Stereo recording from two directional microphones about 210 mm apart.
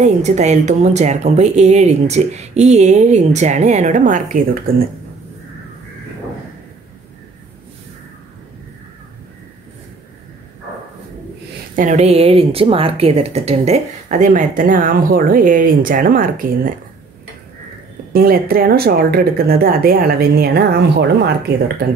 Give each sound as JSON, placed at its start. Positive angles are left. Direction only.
{"t": 0.0, "sound": "speech", "side_deg": -35}
{"t": 11.7, "sound": "speech", "side_deg": -35}
{"t": 18.1, "sound": "speech", "side_deg": -45}